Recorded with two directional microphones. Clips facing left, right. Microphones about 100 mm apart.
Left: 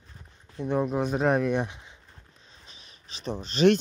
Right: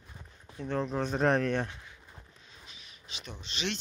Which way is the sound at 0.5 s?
15° left (ahead or behind).